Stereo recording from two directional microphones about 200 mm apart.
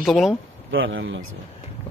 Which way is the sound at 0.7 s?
75° right (ahead or behind).